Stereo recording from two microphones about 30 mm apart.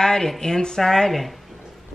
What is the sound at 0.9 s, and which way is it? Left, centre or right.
Speech, centre.